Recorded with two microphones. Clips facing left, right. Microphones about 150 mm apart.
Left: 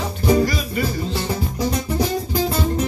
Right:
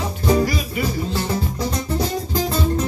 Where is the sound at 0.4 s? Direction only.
10° right (ahead or behind).